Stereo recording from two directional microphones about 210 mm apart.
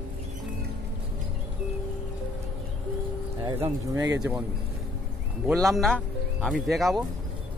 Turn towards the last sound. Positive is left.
turn(degrees=0)  # may be behind; listen again after turning